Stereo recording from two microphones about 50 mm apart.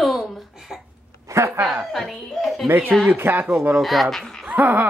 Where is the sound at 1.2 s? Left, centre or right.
Right.